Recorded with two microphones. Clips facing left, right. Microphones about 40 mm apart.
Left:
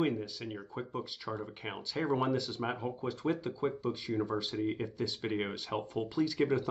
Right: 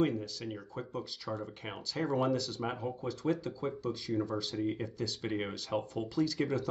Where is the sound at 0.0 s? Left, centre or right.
Centre.